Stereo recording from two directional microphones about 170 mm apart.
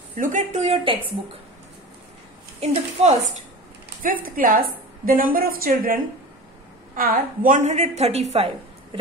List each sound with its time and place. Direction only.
0.2 s speech: 45° right (ahead or behind)
2.6 s a woman's voice: 40° right (ahead or behind)
4.0 s a woman's voice: 55° right (ahead or behind)
7.0 s a woman's voice: 55° right (ahead or behind); by 8.5 s 40° right (ahead or behind)